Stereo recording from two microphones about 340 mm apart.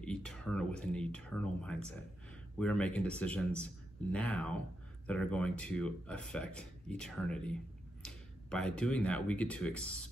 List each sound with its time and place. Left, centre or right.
0.0 s speech: centre